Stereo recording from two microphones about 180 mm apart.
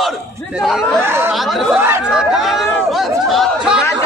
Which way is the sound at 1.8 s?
10° right (ahead or behind).